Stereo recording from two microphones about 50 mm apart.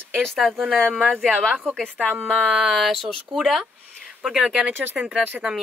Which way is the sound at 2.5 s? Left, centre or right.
Centre.